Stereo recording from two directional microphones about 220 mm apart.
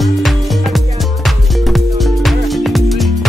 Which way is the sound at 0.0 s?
Centre (ahead or behind).